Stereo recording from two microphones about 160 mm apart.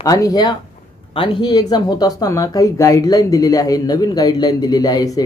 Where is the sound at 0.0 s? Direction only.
20° left (ahead or behind).